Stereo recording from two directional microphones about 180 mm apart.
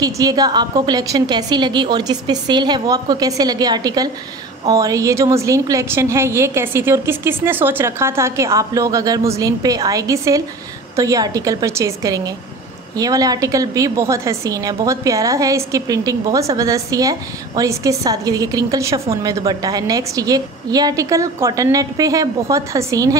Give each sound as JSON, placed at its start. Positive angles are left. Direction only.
{"t": 0.0, "sound": "a woman's voice", "side_deg": -20}